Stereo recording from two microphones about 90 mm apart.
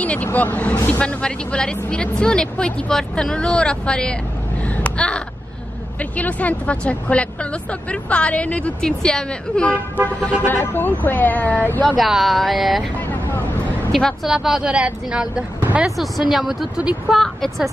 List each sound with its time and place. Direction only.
0.0 s speech: 15° left (ahead or behind)
4.6 s a sound: 15° left (ahead or behind)
5.9 s speech: 15° left (ahead or behind)
10.4 s speech: 25° left (ahead or behind)
12.0 s a woman's voice: centre (ahead or behind)
12.9 s vehicle: 20° left (ahead or behind)
13.9 s speech: centre (ahead or behind)
15.6 s a sound: 15° right (ahead or behind)
16.0 s a woman's voice: centre (ahead or behind)